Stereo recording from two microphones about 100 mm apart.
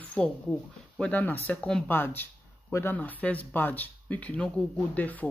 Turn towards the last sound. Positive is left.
turn(degrees=15)  # may be behind; listen again after turning